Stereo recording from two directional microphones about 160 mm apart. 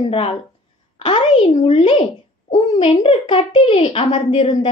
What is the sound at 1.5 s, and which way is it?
A child's voice, 35° left (ahead or behind).